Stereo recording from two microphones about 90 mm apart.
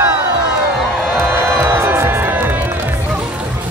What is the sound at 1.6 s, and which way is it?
Music, 25° right (ahead or behind).